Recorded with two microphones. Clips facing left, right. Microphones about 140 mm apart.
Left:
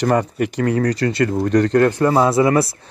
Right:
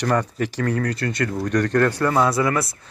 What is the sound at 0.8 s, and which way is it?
Speech, 40° left (ahead or behind).